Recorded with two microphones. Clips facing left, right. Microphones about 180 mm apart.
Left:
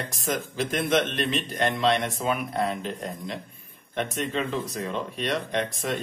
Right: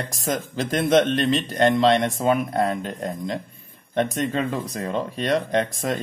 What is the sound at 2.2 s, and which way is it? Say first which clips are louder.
Speech: right 6 dB; 45° right (ahead or behind).